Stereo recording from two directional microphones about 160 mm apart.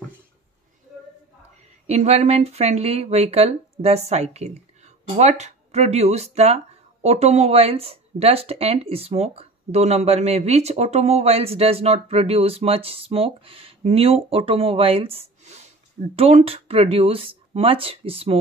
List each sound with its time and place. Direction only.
1.9 s speech: 45° right (ahead or behind)